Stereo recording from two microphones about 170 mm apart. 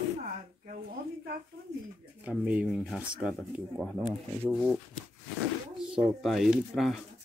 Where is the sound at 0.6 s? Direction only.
60° right (ahead or behind).